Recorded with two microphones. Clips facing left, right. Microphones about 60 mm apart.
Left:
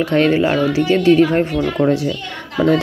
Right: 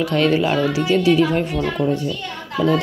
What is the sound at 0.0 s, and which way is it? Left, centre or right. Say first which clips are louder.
Speech: left 3 dB; left.